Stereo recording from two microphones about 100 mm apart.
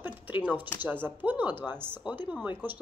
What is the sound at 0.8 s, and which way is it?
A woman's voice, 20° right (ahead or behind).